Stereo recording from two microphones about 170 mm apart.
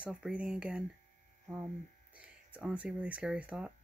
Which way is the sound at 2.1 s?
10° right (ahead or behind).